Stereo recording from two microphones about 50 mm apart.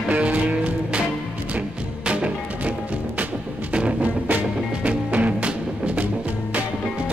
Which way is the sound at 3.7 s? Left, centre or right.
Right.